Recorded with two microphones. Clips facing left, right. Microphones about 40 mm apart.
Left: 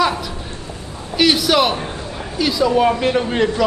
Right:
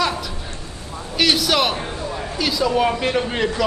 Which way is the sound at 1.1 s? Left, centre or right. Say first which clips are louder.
Left 3 dB; centre.